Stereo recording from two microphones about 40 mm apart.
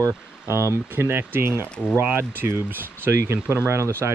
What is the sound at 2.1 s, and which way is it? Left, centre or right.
Speech, right.